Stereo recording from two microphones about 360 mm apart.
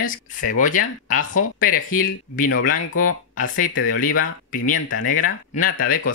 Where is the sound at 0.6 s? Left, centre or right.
Left.